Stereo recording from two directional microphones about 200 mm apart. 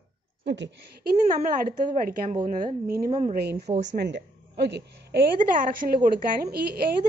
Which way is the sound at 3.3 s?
50° right (ahead or behind).